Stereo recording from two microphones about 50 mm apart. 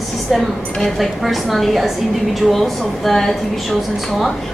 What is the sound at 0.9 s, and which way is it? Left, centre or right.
A woman's voice, centre.